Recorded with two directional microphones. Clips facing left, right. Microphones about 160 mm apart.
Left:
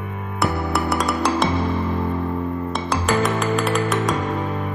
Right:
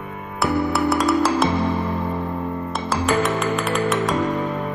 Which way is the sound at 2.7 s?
Centre (ahead or behind).